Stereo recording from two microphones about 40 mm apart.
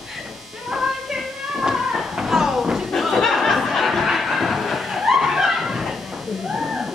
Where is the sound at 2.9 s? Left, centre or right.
Centre.